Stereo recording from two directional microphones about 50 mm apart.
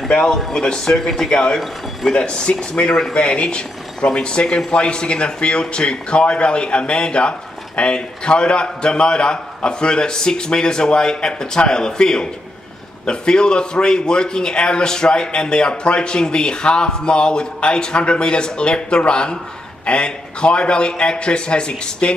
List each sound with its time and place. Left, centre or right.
0.3 s a man's voice: centre